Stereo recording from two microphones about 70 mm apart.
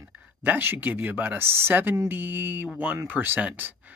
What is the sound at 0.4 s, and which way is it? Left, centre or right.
Speech, right.